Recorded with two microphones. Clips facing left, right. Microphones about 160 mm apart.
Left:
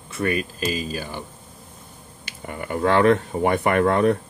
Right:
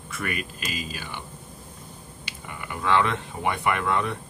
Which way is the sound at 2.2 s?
50° left (ahead or behind).